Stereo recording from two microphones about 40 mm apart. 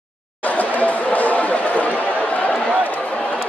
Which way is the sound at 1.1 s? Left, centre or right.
Left.